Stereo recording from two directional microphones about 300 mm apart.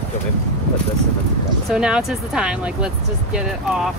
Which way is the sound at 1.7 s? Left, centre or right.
Centre.